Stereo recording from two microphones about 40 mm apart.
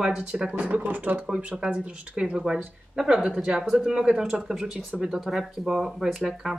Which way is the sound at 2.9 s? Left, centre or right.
Centre.